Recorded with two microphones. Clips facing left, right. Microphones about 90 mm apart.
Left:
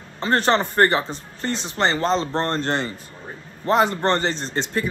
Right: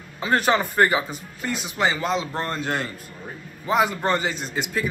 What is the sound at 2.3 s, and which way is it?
Speech, 30° left (ahead or behind).